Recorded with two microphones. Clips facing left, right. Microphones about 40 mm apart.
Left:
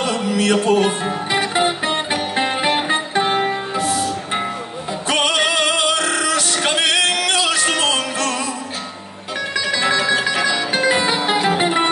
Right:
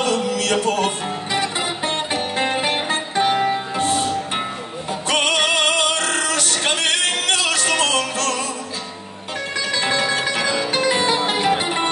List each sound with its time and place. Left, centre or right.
0.0 s music: left
5.3 s music: left
9.8 s music: left
10.7 s music: left